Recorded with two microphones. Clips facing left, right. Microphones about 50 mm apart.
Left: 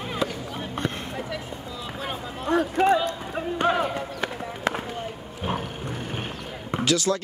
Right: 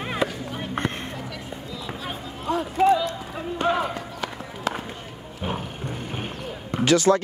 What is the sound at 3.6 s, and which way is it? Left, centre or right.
Run, left.